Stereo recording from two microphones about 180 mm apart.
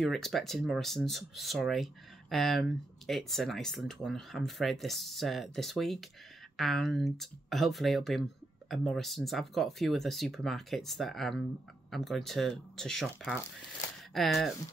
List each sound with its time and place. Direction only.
0.0 s speech: centre (ahead or behind)